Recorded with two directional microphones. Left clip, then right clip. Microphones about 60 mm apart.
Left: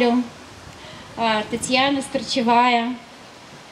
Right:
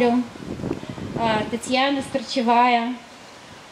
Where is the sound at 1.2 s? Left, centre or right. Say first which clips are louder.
Left 2 dB; left.